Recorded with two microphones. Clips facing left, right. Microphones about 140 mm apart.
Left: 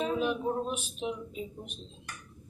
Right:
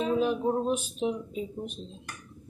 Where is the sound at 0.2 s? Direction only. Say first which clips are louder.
Right 4 dB; 35° right (ahead or behind).